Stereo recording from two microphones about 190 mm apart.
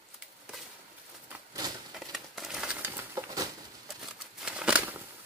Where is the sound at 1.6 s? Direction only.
20° right (ahead or behind).